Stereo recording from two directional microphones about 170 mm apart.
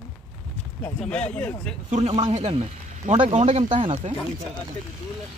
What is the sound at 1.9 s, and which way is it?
Speech, 35° right (ahead or behind).